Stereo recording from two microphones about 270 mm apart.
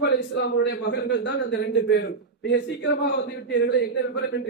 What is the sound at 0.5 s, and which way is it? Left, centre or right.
A man's voice, left.